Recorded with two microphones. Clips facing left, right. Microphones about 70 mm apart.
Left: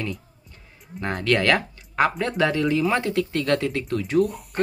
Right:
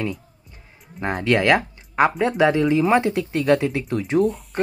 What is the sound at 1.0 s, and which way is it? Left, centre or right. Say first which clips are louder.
Speech: right 3 dB; centre.